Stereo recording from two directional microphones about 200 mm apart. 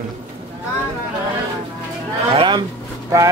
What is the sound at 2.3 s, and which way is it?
Speech, 25° right (ahead or behind).